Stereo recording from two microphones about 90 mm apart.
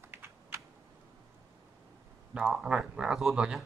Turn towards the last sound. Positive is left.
turn(degrees=-5)  # may be behind; listen again after turning